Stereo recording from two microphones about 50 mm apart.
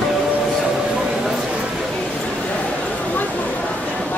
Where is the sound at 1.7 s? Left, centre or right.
Centre.